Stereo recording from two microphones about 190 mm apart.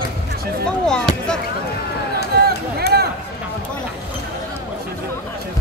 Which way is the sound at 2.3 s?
55° right (ahead or behind).